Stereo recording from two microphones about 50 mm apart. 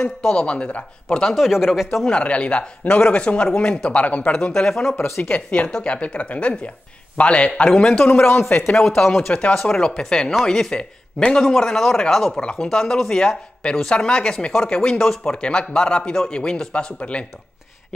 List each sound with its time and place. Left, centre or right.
0.2 s a man's voice: centre
1.3 s speech: centre
2.0 s a man's voice: left
4.5 s a man's voice: centre
4.9 s speech: left
5.2 s a man's voice: left
7.9 s a man's voice: left
8.6 s speech: centre
9.3 s a man's voice: left
11.4 s a man's voice: centre
15.0 s speech: centre
15.3 s a man's voice: centre